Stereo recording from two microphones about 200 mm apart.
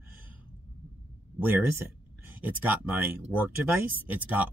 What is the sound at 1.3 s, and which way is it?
Speech, 10° right (ahead or behind).